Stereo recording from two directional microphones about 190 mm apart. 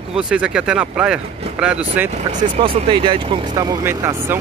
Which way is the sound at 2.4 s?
30° right (ahead or behind).